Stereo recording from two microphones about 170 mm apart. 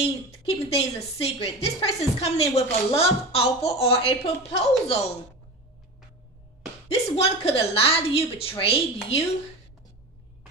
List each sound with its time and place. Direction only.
0.0 s a woman's voice: 35° left (ahead or behind)
6.9 s a woman's voice: 35° left (ahead or behind)